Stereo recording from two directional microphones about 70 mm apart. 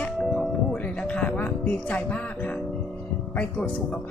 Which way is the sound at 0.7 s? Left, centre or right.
Centre.